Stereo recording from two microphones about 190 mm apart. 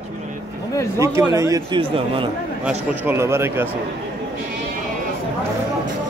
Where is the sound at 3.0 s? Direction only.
15° right (ahead or behind).